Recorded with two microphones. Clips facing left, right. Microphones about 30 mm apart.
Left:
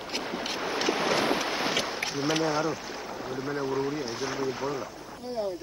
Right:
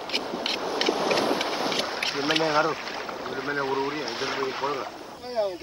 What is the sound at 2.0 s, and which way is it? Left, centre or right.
Speech, right.